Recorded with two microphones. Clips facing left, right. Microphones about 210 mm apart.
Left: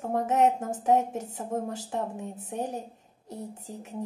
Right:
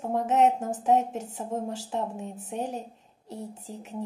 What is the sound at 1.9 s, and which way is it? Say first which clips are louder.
Speech: right 1 dB; 55° left (ahead or behind).